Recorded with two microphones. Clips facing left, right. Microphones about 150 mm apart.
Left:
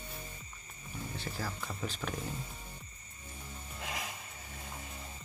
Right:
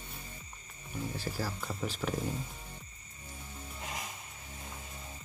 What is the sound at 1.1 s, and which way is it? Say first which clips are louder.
Speech: even; 5° right (ahead or behind).